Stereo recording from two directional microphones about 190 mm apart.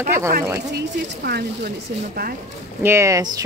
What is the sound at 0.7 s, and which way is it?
Speech, 60° right (ahead or behind).